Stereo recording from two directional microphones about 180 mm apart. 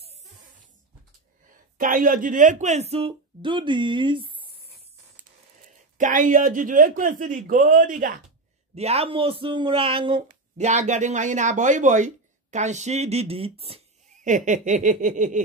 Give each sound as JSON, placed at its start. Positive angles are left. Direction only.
{"t": 1.8, "sound": "speech", "side_deg": -50}
{"t": 5.9, "sound": "speech", "side_deg": -45}
{"t": 8.7, "sound": "speech", "side_deg": -35}
{"t": 10.2, "sound": "speech", "side_deg": -40}